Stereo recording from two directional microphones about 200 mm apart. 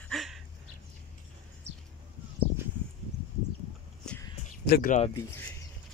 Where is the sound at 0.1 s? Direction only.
Centre (ahead or behind).